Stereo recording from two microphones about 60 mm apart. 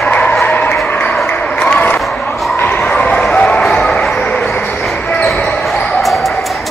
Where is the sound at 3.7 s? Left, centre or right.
Left.